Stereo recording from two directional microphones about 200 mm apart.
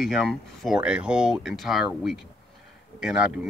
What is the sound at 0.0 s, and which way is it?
Speech, centre (ahead or behind).